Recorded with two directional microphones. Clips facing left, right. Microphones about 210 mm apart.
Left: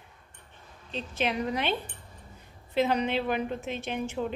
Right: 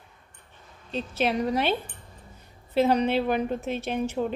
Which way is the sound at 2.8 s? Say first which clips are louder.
Right 4 dB; 40° right (ahead or behind).